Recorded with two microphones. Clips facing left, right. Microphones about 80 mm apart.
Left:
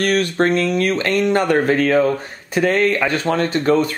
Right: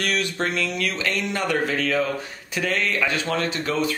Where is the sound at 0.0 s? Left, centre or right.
Left.